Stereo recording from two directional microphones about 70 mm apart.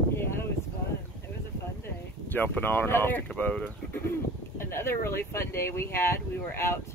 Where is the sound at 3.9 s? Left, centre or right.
Left.